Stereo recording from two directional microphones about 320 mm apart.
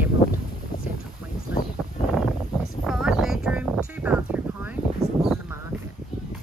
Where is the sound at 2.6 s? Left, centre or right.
Centre.